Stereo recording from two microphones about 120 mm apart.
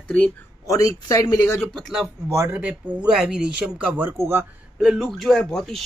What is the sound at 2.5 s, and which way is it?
Speech, 15° right (ahead or behind).